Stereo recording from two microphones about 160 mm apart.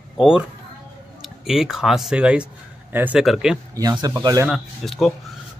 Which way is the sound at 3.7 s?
25° right (ahead or behind).